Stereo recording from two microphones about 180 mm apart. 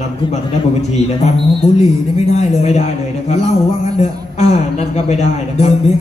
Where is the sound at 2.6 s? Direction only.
40° left (ahead or behind).